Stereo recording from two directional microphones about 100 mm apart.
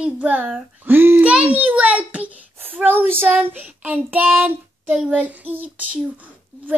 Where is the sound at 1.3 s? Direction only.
10° right (ahead or behind).